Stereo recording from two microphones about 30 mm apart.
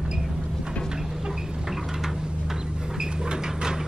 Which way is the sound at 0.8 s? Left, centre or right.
Centre.